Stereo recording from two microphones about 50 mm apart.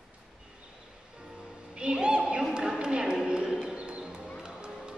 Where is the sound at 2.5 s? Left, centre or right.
Centre.